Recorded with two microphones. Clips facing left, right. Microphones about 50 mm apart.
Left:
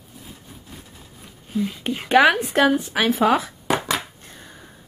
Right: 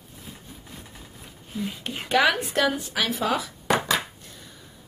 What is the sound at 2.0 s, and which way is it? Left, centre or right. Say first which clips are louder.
Speech: left 6 dB; left.